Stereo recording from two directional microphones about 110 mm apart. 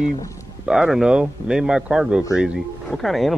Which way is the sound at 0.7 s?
5° right (ahead or behind).